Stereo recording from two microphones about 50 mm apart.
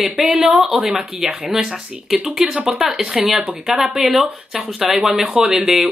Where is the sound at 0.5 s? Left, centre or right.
Centre.